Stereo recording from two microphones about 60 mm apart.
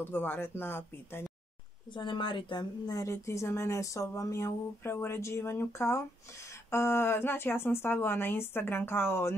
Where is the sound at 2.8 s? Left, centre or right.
Left.